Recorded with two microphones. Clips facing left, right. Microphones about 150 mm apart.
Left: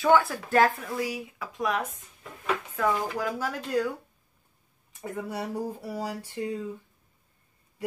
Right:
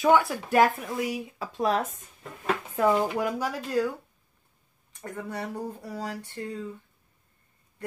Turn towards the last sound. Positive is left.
turn(degrees=10)  # may be behind; listen again after turning